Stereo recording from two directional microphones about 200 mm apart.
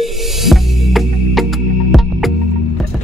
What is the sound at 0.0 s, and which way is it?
Music, centre (ahead or behind).